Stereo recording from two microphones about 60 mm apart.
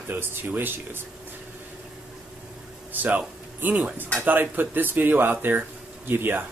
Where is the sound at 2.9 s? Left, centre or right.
Right.